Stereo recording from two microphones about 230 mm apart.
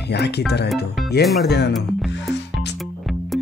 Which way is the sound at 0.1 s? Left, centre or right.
Left.